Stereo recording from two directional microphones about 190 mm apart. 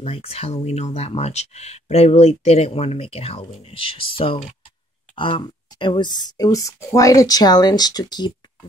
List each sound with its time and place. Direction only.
0.0 s speech: 30° left (ahead or behind)